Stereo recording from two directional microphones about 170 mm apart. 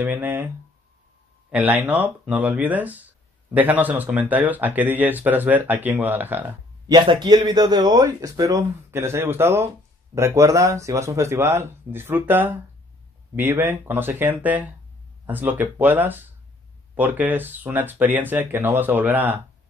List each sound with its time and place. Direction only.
0.0 s speech: 10° right (ahead or behind)
1.5 s speech: 10° right (ahead or behind)
6.9 s speech: 25° right (ahead or behind)